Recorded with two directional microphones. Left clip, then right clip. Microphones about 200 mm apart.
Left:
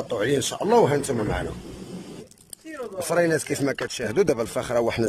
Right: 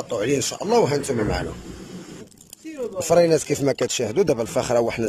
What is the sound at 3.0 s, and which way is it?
Speech, 15° right (ahead or behind).